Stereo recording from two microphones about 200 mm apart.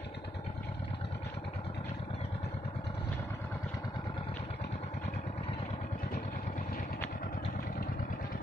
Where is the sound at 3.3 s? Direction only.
15° left (ahead or behind); by 8.4 s 45° left (ahead or behind).